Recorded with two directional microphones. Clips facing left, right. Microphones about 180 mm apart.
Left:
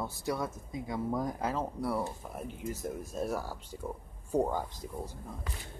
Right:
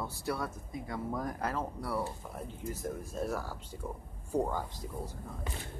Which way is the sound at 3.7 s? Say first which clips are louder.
Left 2 dB; 25° left (ahead or behind).